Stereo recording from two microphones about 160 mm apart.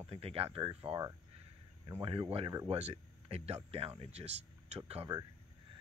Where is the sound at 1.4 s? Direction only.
35° right (ahead or behind).